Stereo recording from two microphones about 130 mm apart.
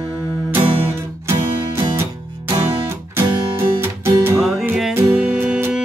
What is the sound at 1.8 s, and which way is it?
Music, 20° right (ahead or behind).